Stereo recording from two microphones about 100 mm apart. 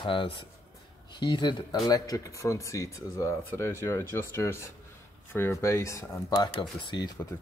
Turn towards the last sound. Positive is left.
turn(degrees=20)  # may be behind; listen again after turning